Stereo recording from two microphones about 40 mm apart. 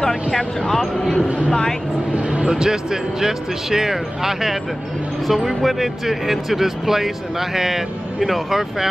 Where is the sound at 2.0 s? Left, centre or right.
Right.